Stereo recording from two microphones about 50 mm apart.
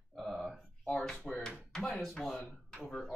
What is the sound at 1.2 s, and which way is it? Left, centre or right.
Speech, centre.